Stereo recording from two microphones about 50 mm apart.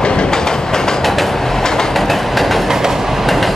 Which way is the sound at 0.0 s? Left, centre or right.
Centre.